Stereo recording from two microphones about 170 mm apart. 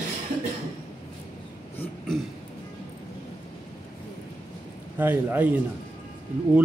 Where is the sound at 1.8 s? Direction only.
5° left (ahead or behind).